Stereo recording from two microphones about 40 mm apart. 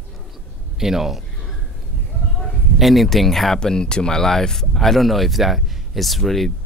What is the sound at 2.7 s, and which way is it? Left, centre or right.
Speech, centre.